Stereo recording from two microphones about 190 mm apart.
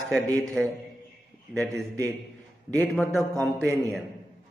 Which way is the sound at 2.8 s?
Centre (ahead or behind).